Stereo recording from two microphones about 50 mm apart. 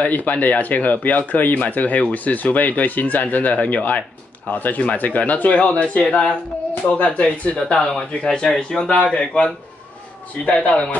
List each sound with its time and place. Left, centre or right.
0.0 s speech: left
6.0 s speech: centre